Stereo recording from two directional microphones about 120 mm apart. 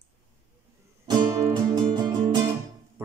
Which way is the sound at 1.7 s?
40° right (ahead or behind).